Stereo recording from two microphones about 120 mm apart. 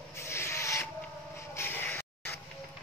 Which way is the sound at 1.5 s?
20° left (ahead or behind).